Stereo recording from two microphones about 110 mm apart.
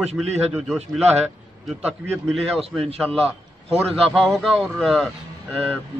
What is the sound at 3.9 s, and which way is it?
Speech, centre (ahead or behind).